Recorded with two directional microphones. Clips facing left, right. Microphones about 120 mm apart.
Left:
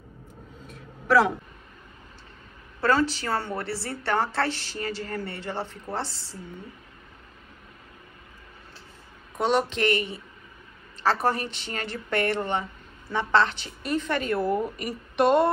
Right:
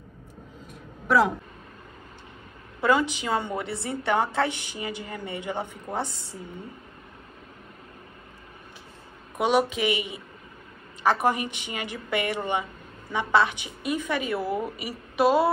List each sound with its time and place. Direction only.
2.8 s speech: 15° right (ahead or behind)
9.4 s speech: 10° right (ahead or behind)